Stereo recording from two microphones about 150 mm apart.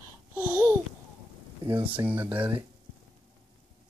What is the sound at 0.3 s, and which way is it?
Babbling, 15° right (ahead or behind).